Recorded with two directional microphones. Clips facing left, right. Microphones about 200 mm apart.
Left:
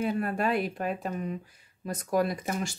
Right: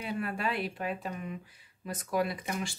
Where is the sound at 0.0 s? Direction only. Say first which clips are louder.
Left 6 dB; 45° left (ahead or behind).